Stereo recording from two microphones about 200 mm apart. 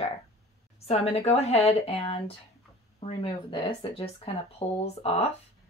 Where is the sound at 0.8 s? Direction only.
30° left (ahead or behind).